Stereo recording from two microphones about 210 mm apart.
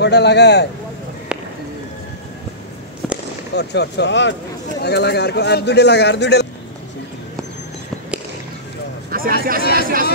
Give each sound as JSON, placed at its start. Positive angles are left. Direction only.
{"t": 0.0, "sound": "a man's voice", "side_deg": 55}
{"t": 3.0, "sound": "fireworks", "side_deg": 0}
{"t": 3.5, "sound": "a man's voice", "side_deg": 55}
{"t": 9.1, "sound": "speech", "side_deg": -45}